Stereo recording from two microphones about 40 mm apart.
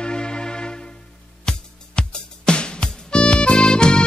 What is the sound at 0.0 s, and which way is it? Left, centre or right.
Music, centre.